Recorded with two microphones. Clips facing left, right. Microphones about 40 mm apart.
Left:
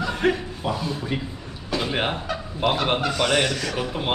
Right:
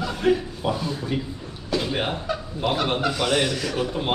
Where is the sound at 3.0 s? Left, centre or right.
Centre.